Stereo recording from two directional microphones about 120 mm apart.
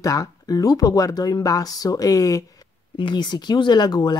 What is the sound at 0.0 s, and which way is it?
Speech, 30° left (ahead or behind).